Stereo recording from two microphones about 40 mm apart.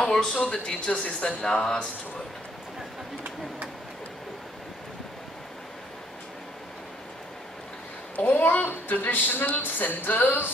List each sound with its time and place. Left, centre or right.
0.1 s a woman's voice: centre; by 1.9 s left
8.2 s a woman's voice: left
8.5 s a sound: left